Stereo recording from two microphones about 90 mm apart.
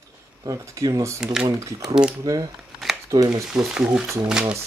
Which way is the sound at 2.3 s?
40° right (ahead or behind).